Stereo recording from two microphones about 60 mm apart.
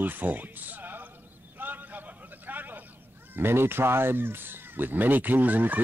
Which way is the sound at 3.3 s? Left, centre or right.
Right.